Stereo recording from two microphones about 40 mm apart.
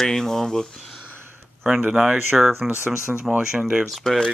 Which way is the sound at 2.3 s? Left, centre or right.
Centre.